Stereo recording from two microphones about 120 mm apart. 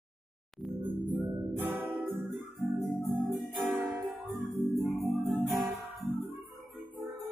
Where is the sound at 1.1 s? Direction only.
15° right (ahead or behind).